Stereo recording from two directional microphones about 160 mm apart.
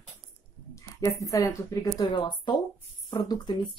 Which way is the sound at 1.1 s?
20° left (ahead or behind).